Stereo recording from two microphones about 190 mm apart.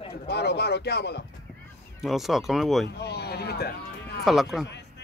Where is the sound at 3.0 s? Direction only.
60° left (ahead or behind).